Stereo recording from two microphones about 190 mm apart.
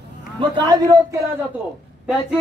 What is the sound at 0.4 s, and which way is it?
Speech, 25° right (ahead or behind).